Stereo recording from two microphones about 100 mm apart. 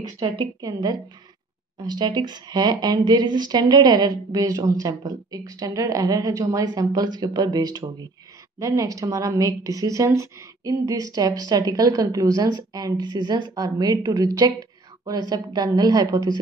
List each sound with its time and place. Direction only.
0.6 s speech: 40° right (ahead or behind)